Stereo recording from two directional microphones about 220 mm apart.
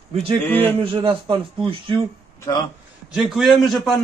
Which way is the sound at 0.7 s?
25° right (ahead or behind).